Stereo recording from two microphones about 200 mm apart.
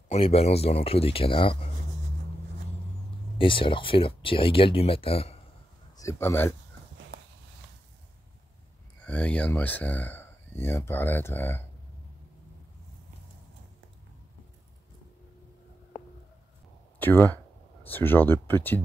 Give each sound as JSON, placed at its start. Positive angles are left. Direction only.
{"t": 0.1, "sound": "speech", "side_deg": 30}
{"t": 3.3, "sound": "speech", "side_deg": 25}
{"t": 5.9, "sound": "speech", "side_deg": 15}
{"t": 9.0, "sound": "speech", "side_deg": 5}
{"t": 17.0, "sound": "speech", "side_deg": 10}